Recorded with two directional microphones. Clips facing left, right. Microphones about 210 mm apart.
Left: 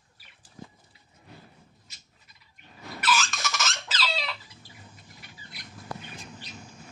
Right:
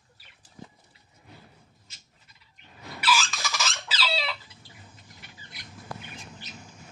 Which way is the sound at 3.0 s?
10° right (ahead or behind).